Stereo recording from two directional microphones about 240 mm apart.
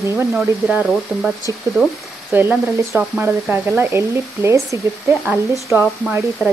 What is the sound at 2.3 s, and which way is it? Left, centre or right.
Speech, centre.